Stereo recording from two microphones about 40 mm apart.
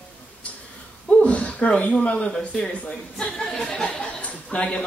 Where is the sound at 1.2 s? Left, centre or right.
Left.